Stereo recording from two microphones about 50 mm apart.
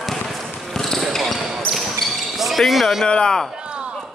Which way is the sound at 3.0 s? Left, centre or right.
Centre.